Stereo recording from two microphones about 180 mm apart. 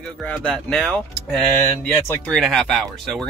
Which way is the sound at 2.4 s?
Centre (ahead or behind).